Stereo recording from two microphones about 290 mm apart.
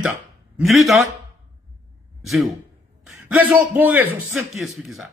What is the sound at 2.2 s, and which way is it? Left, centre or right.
A man's voice, centre.